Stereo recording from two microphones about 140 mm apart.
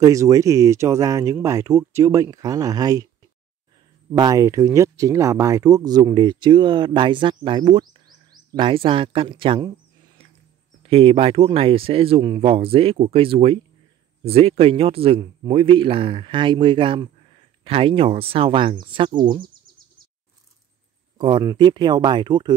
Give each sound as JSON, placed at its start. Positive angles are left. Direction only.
{"t": 0.0, "sound": "speech", "side_deg": -25}
{"t": 4.1, "sound": "speech", "side_deg": -25}
{"t": 10.8, "sound": "speech", "side_deg": -40}
{"t": 21.2, "sound": "speech", "side_deg": -35}